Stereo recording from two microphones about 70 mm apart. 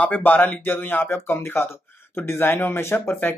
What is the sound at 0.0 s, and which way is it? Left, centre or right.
Speech, left.